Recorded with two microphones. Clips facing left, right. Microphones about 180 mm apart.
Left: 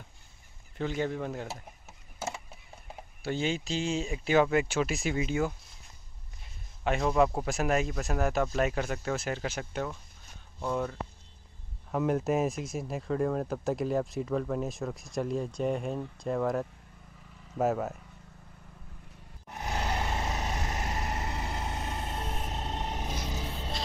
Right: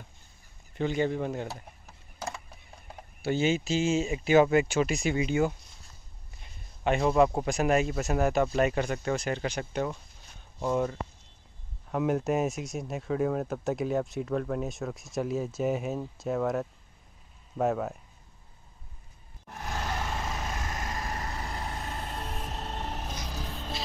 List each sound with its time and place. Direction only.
0.7 s speech: centre (ahead or behind)
2.1 s a sound: 5° left (ahead or behind)
3.2 s speech: 5° right (ahead or behind)
6.8 s speech: centre (ahead or behind)
10.6 s speech: 15° right (ahead or behind)
11.9 s speech: centre (ahead or behind)
19.5 s vehicle: 15° left (ahead or behind)
23.0 s music: 5° left (ahead or behind)